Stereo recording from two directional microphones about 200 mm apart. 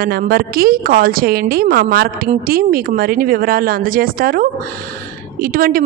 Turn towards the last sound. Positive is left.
turn(degrees=-45)  # may be behind; listen again after turning